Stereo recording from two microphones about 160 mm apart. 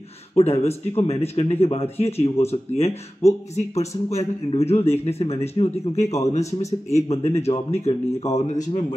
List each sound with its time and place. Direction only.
0.4 s a man's voice: 40° left (ahead or behind)